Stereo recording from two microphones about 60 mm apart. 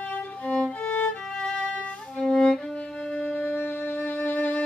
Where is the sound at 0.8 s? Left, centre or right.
Left.